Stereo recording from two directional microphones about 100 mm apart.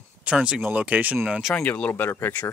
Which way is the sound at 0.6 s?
15° right (ahead or behind).